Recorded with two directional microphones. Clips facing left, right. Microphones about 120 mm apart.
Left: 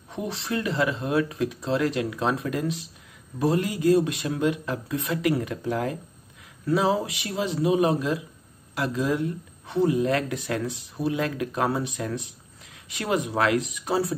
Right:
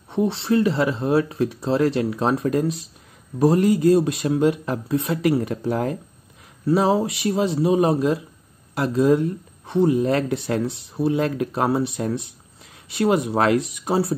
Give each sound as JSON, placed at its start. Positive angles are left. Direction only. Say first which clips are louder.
{"t": 0.1, "sound": "speech", "louder": "right 9 dB", "side_deg": -30}